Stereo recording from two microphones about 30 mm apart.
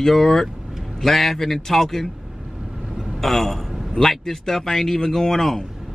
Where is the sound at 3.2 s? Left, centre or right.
Centre.